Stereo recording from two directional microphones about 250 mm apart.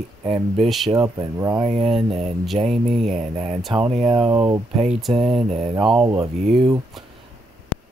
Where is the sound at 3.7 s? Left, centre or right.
Centre.